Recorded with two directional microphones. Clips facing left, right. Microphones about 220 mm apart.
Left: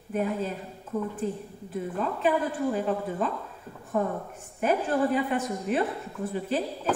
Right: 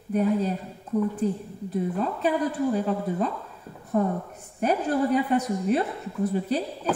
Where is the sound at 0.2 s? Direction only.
40° right (ahead or behind).